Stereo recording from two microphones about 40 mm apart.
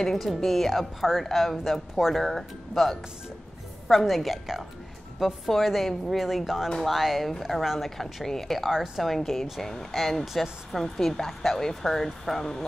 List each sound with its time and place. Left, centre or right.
0.1 s speech: centre
8.0 s speech: centre
8.6 s a woman's voice: centre
8.9 s speech: centre
10.2 s a woman's voice: centre
10.7 s speech: centre